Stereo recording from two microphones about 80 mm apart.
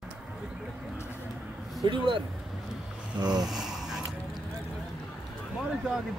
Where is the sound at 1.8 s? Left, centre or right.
Right.